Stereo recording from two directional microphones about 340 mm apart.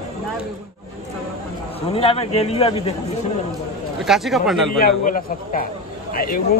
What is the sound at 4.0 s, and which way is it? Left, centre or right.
Speech, centre.